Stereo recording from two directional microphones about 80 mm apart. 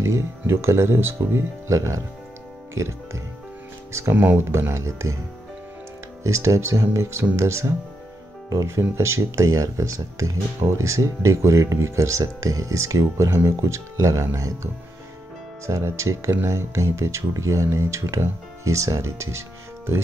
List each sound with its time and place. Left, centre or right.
0.1 s speech: right
6.2 s speech: right
8.9 s speech: right